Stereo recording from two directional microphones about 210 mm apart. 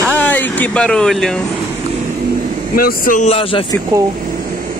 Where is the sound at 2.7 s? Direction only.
45° left (ahead or behind); by 3.8 s 25° left (ahead or behind).